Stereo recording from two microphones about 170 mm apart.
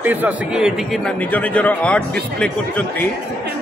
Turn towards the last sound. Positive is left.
turn(degrees=5)  # may be behind; listen again after turning